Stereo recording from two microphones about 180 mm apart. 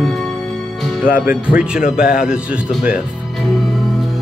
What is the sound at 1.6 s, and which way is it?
Music, 5° right (ahead or behind).